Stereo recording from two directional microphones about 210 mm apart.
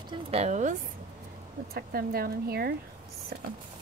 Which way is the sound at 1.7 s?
45° right (ahead or behind).